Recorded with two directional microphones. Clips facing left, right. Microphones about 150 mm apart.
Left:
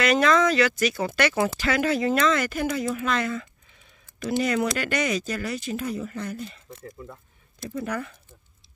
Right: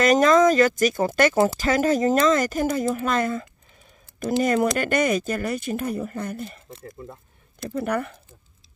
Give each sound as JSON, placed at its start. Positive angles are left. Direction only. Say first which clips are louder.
{"t": 0.0, "sound": "speech", "louder": "right 4 dB", "side_deg": -45}
{"t": 6.7, "sound": "speech", "louder": "right 1 dB", "side_deg": -30}
{"t": 7.7, "sound": "speech", "louder": "right 5 dB", "side_deg": -60}